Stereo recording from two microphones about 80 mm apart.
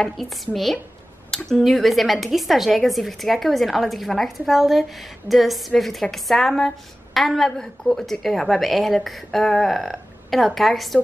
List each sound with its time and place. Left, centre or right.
0.0 s a woman's voice: centre